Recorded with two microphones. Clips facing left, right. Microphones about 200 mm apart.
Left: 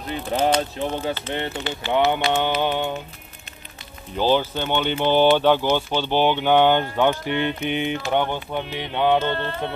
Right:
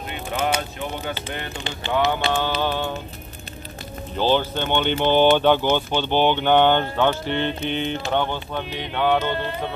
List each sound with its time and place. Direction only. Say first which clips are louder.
0.1 s speech: left 4 dB; 35° left (ahead or behind); by 3.0 s 15° left (ahead or behind)
4.2 s speech: even; 10° left (ahead or behind)
9.3 s speech: even; 10° right (ahead or behind)